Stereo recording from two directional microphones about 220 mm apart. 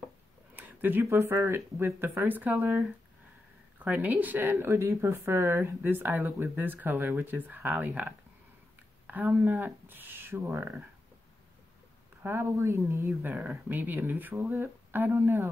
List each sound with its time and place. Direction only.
0.6 s speech: 10° right (ahead or behind)
3.8 s speech: 5° right (ahead or behind)
12.2 s speech: 10° right (ahead or behind)